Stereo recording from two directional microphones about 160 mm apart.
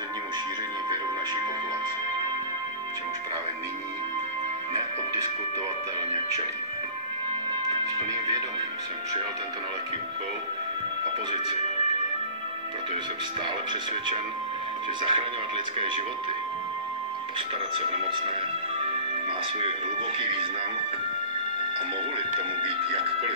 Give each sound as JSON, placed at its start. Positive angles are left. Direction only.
{"t": 7.8, "sound": "music", "side_deg": -20}
{"t": 15.0, "sound": "speech", "side_deg": -30}
{"t": 20.2, "sound": "speech", "side_deg": -35}
{"t": 22.6, "sound": "speech", "side_deg": -35}